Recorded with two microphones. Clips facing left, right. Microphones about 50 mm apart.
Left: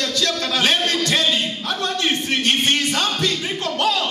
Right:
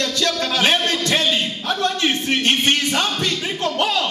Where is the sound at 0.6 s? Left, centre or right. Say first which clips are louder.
Even; right.